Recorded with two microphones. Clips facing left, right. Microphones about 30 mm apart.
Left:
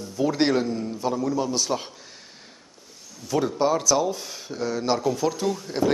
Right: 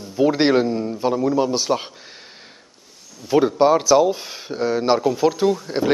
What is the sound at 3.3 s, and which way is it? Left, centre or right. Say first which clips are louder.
A man's voice: right 7 dB; right.